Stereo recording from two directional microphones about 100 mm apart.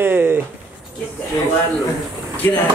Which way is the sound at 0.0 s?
25° right (ahead or behind).